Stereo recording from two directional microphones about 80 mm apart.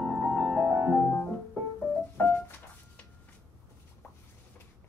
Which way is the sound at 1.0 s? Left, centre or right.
Left.